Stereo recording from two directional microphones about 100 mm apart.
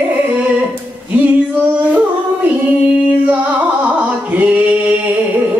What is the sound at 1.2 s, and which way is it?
Female singing, 15° right (ahead or behind).